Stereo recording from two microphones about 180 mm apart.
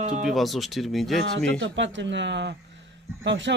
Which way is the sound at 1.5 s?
90° right.